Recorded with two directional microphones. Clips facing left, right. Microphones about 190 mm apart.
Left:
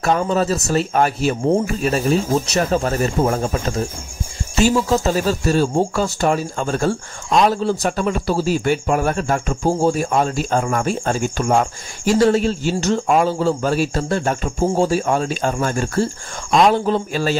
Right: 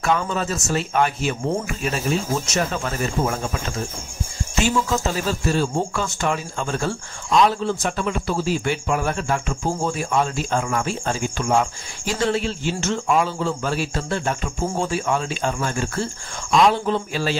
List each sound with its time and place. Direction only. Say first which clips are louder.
0.0 s a man's voice: left 5 dB; 40° left (ahead or behind)